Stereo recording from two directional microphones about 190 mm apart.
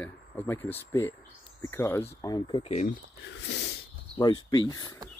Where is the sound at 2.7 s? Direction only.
35° left (ahead or behind).